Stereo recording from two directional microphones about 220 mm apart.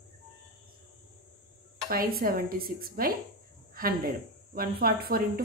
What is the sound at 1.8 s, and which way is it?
A woman's voice, 40° right (ahead or behind).